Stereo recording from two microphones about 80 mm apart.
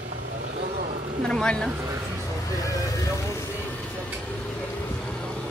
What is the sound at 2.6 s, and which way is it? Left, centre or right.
Vehicle, left.